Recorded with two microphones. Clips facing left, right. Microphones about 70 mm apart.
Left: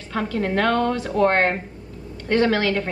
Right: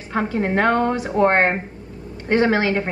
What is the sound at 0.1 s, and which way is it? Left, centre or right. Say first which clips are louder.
A woman's voice: right 2 dB; right.